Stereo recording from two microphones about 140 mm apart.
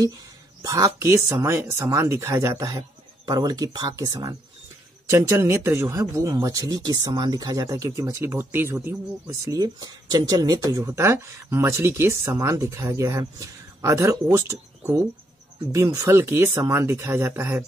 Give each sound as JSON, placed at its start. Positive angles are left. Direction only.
{"t": 0.6, "sound": "speech", "side_deg": -25}